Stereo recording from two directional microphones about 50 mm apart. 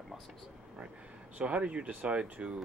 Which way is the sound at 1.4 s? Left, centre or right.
Right.